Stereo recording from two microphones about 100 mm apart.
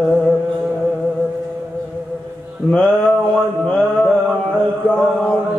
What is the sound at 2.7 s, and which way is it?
Mantra, 10° left (ahead or behind).